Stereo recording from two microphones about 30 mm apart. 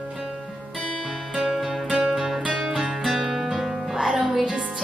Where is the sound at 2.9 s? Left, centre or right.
Centre.